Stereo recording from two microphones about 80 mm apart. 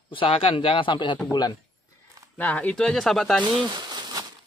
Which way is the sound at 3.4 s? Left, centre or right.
Right.